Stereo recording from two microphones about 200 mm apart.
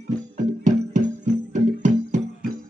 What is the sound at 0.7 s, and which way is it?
Music, 35° right (ahead or behind).